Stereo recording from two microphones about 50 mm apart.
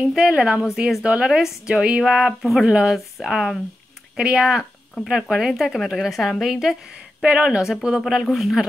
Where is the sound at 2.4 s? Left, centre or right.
Centre.